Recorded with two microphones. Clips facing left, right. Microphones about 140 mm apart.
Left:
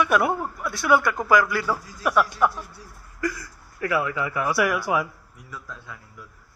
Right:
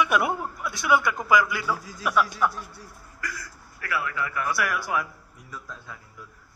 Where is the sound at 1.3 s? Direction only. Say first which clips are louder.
Left 2 dB; 15° right (ahead or behind).